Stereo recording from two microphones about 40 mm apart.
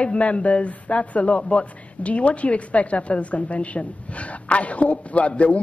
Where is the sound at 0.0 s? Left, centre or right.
Left.